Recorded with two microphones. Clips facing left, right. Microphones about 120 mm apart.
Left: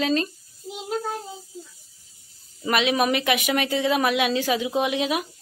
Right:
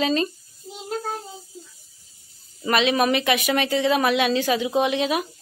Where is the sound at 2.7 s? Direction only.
5° left (ahead or behind).